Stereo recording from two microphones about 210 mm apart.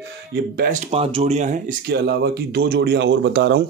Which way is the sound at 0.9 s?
30° right (ahead or behind).